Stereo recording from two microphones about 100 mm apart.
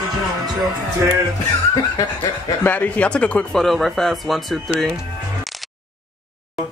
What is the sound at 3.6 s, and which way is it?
Speech, centre (ahead or behind).